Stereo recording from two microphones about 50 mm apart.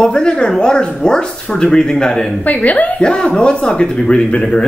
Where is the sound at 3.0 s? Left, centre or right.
Centre.